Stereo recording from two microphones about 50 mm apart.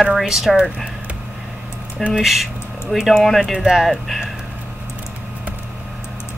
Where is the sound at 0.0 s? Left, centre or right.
Centre.